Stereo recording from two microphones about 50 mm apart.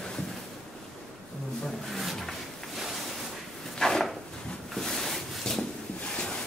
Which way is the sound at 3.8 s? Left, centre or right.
Centre.